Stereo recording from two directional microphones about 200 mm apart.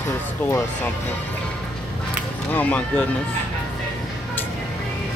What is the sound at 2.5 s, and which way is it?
Speech, 10° left (ahead or behind).